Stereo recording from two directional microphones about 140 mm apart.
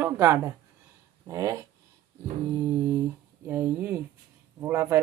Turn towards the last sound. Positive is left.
turn(degrees=-20)  # may be behind; listen again after turning